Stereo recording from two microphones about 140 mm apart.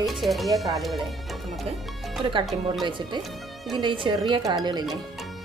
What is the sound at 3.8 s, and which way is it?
Speech, 35° right (ahead or behind).